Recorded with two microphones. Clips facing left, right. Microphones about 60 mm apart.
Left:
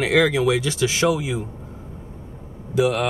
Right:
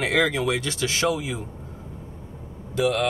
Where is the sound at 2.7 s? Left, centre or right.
Centre.